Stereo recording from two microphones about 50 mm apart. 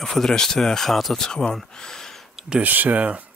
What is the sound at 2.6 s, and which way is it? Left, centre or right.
Speech, right.